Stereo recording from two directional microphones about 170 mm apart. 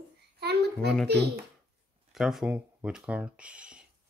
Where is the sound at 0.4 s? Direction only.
75° right (ahead or behind).